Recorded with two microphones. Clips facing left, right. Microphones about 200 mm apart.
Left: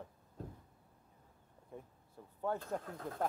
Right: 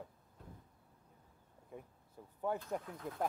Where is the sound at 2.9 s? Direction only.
50° left (ahead or behind).